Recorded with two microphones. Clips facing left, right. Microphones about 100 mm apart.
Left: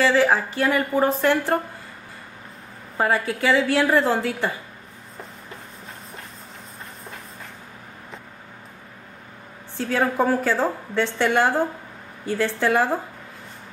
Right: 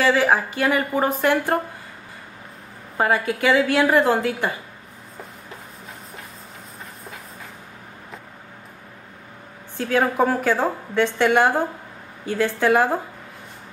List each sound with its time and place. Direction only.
0.0 s a woman's voice: 15° right (ahead or behind)
3.0 s a woman's voice: 15° right (ahead or behind)
9.8 s a woman's voice: 15° right (ahead or behind)